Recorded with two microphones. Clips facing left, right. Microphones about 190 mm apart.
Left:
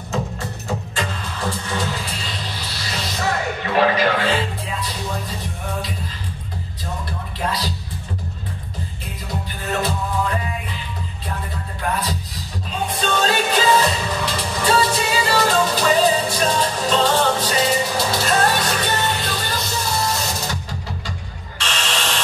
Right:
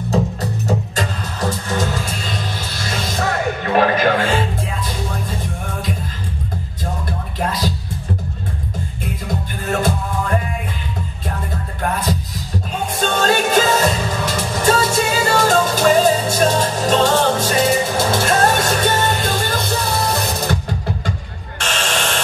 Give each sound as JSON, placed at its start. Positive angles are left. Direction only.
{"t": 0.1, "sound": "music", "side_deg": -40}
{"t": 7.1, "sound": "music", "side_deg": -45}
{"t": 9.7, "sound": "music", "side_deg": -50}
{"t": 13.0, "sound": "music", "side_deg": -50}
{"t": 21.5, "sound": "a sound", "side_deg": -50}